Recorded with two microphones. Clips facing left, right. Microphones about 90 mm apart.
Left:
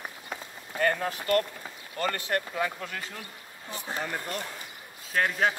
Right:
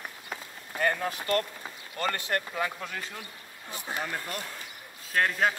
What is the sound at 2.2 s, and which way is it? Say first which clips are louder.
Speech: left 1 dB; 20° left (ahead or behind).